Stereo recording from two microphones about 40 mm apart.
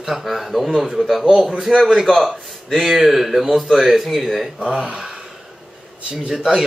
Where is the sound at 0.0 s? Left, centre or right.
Centre.